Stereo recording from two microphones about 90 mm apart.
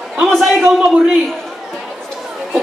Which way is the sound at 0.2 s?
5° right (ahead or behind).